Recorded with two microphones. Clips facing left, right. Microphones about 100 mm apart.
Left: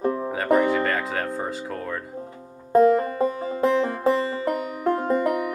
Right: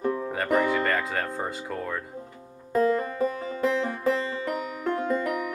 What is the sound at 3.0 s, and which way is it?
Banjo, 35° left (ahead or behind).